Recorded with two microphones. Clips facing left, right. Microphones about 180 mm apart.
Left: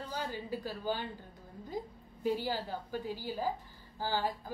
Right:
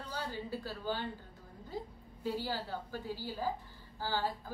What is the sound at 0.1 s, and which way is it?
Speech, 10° left (ahead or behind).